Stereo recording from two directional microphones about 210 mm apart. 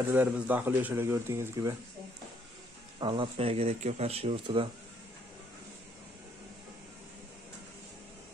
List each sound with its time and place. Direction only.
0.1 s speech: 10° right (ahead or behind)
3.0 s speech: 25° right (ahead or behind)